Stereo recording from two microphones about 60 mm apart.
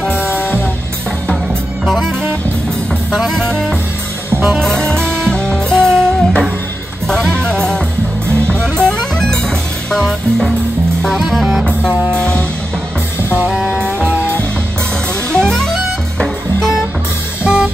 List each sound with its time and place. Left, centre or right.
0.1 s music: left
3.2 s music: centre
4.3 s music: right
4.6 s music: centre
12.1 s music: centre
13.5 s music: centre
15.3 s music: centre
17.4 s music: right